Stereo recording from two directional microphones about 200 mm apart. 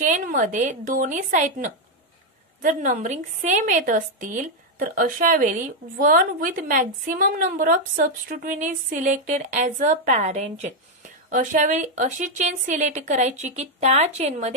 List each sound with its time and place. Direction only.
0.1 s a woman's voice: 40° right (ahead or behind)